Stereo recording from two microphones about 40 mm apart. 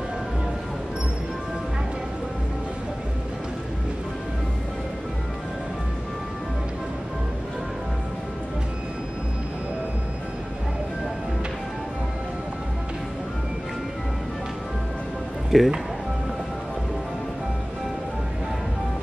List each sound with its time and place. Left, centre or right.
15.5 s speech: centre